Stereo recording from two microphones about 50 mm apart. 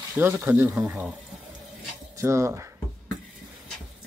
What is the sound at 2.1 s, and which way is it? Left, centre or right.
Speech, right.